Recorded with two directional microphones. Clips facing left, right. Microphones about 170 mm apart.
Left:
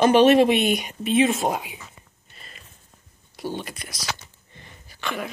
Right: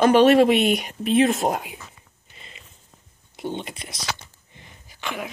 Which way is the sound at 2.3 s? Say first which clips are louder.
Right 1 dB; 15° right (ahead or behind).